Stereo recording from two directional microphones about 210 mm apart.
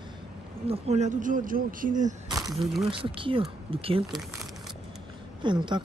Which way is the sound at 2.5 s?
Centre (ahead or behind).